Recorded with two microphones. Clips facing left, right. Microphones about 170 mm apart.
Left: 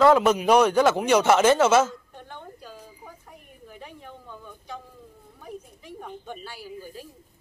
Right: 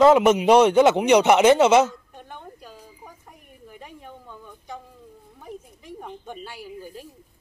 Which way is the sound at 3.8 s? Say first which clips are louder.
Even; 15° right (ahead or behind).